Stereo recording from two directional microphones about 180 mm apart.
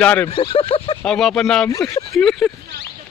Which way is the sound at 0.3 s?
30° left (ahead or behind).